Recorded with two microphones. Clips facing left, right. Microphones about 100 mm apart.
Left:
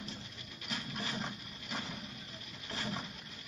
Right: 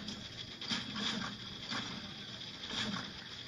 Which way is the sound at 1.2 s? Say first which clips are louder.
Left 2 dB; 60° left (ahead or behind).